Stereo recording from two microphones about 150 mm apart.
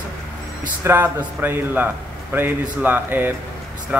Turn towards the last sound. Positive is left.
turn(degrees=-15)  # may be behind; listen again after turning